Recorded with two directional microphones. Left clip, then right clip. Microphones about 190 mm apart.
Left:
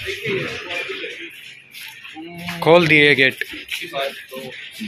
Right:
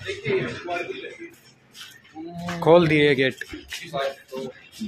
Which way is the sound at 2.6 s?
Centre (ahead or behind).